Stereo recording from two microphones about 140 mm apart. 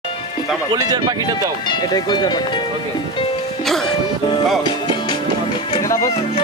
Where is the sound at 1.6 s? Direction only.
30° left (ahead or behind).